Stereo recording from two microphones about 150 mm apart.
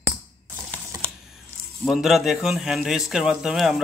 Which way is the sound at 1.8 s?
Centre (ahead or behind).